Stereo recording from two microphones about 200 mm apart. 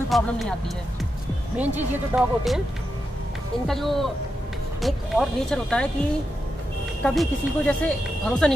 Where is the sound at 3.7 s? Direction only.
Centre (ahead or behind).